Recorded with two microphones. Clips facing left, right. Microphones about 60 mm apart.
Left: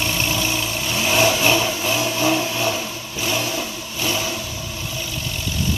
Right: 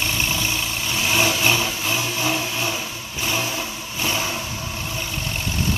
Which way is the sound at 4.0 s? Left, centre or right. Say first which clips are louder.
Left 1 dB; right.